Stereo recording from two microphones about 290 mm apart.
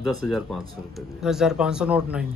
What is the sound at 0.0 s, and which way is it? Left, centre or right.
Speech, centre.